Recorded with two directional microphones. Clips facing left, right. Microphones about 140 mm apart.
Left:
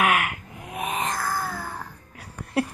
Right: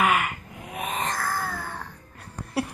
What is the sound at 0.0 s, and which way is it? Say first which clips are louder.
Music: even; 5° left (ahead or behind).